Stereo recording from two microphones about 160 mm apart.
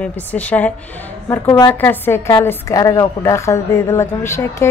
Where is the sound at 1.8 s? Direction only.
15° left (ahead or behind).